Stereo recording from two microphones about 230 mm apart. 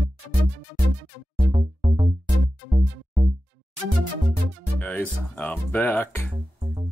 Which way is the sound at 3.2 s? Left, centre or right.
Right.